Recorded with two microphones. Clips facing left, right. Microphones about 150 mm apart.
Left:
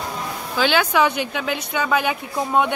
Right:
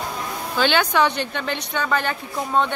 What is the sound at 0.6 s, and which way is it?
A woman's voice, 5° left (ahead or behind).